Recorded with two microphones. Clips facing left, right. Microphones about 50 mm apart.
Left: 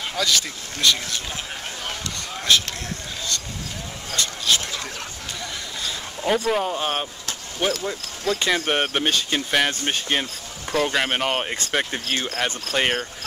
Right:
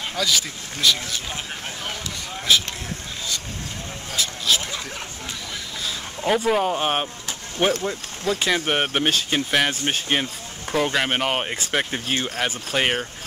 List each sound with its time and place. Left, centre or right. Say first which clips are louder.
0.1 s speech: even; centre
2.5 s speech: even; centre
4.1 s speech: even; centre
5.9 s speech: right 1 dB; centre; by 7.8 s right
8.3 s speech: even; centre